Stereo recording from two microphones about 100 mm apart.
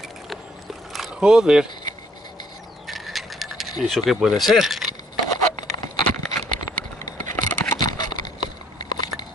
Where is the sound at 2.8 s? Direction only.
Centre (ahead or behind).